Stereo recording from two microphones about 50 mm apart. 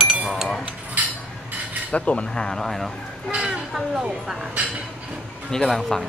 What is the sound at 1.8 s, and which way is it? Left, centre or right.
Speech, left.